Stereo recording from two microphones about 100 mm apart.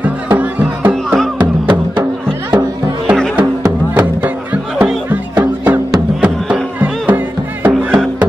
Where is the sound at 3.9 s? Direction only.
15° right (ahead or behind).